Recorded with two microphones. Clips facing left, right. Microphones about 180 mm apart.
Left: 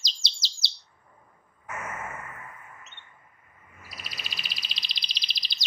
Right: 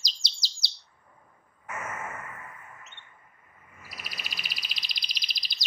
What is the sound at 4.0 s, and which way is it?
Bird, 25° left (ahead or behind).